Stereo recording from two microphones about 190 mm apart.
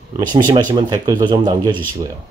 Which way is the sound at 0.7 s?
20° right (ahead or behind).